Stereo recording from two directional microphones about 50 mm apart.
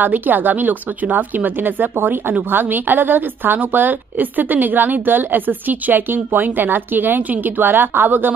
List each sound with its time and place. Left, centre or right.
0.0 s a woman's voice: right